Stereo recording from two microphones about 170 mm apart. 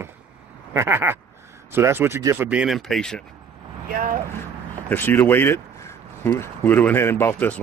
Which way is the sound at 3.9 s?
55° right (ahead or behind).